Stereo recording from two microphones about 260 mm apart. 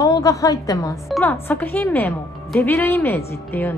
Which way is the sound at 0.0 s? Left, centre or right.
Centre.